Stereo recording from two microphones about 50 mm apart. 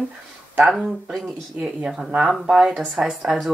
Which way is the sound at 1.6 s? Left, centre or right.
Right.